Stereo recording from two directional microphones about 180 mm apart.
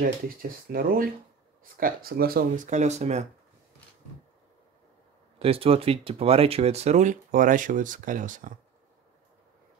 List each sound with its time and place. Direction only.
0.0 s speech: 50° right (ahead or behind)
5.4 s speech: 30° right (ahead or behind)